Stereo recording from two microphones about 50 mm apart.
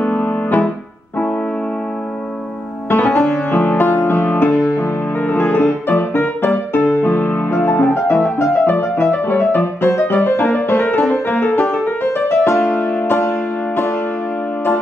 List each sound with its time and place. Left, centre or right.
0.0 s music: left
2.9 s music: left
9.1 s music: left
12.6 s music: left
13.0 s music: left